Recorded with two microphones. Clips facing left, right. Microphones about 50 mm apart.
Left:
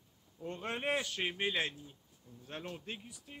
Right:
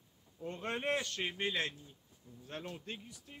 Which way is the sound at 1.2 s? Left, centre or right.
Centre.